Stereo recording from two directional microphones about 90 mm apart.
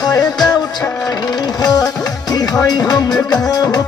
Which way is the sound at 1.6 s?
45° left (ahead or behind).